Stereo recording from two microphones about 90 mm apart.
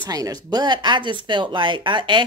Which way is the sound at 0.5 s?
55° right (ahead or behind).